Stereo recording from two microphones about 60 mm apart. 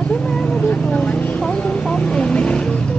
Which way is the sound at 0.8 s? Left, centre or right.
Centre.